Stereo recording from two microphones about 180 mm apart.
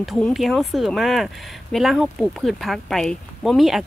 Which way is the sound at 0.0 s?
Centre (ahead or behind).